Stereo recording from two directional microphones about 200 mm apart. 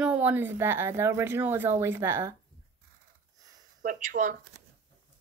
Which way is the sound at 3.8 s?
40° right (ahead or behind).